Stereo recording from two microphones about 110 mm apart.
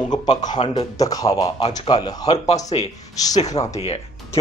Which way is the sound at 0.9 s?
35° left (ahead or behind).